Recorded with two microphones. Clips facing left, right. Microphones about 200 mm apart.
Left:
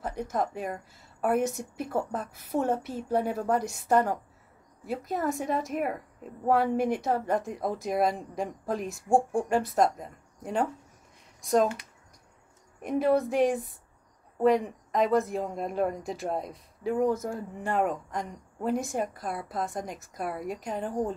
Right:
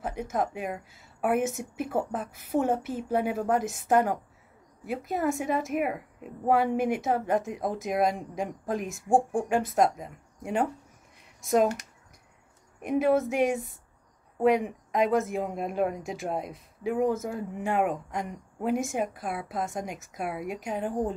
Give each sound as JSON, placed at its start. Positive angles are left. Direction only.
{"t": 0.0, "sound": "speech", "side_deg": -5}
{"t": 12.8, "sound": "speech", "side_deg": 0}